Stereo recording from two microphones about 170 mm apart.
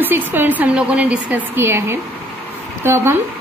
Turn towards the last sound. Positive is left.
turn(degrees=-15)  # may be behind; listen again after turning